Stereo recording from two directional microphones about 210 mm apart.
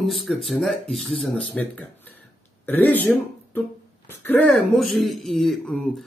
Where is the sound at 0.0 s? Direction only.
Centre (ahead or behind).